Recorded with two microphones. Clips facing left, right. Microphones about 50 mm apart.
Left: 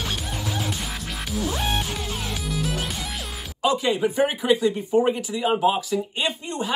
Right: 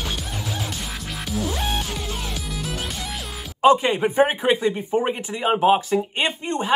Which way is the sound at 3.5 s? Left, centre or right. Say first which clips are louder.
Right 6 dB; right.